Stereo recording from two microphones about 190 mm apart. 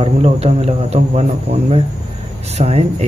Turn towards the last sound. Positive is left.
turn(degrees=-35)  # may be behind; listen again after turning